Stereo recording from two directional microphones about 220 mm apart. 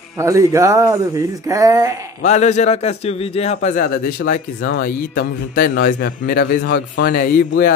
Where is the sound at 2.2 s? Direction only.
30° left (ahead or behind).